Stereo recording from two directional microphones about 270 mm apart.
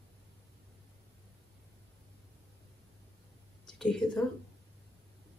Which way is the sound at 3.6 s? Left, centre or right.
Centre.